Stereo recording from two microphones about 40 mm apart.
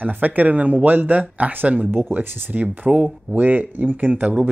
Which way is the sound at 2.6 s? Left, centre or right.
Right.